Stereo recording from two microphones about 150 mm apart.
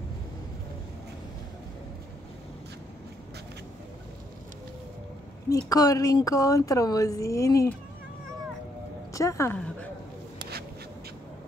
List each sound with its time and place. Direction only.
5.7 s speech: 25° left (ahead or behind)
9.1 s a woman's voice: 20° left (ahead or behind)